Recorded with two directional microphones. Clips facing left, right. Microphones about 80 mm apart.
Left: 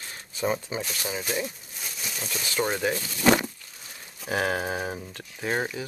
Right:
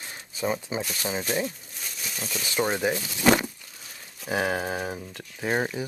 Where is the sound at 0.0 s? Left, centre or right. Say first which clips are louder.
Right 1 dB; centre.